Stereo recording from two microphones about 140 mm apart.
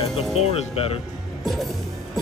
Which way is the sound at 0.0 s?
45° left (ahead or behind).